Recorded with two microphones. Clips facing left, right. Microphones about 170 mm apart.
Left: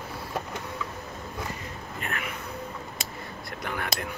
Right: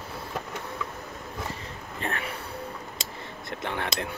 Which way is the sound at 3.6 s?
25° right (ahead or behind).